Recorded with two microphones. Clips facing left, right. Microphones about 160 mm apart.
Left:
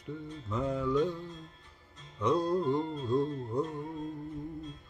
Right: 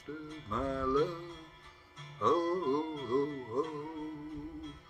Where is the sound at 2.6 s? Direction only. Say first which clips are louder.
Left 2 dB; 5° right (ahead or behind).